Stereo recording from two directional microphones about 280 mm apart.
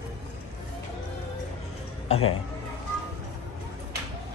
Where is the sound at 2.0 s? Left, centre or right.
Left.